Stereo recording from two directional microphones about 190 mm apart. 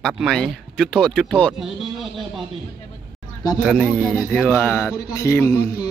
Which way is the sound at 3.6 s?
Centre (ahead or behind).